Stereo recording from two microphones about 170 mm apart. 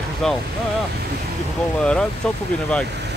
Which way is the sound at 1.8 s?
5° left (ahead or behind).